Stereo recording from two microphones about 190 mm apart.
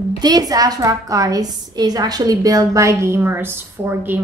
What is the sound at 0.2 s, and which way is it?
A woman's voice, 20° right (ahead or behind).